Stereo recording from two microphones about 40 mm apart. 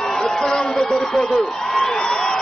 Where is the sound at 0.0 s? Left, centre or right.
Centre.